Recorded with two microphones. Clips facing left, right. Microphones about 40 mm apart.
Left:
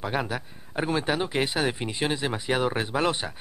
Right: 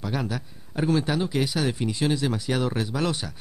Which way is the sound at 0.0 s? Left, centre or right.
Left.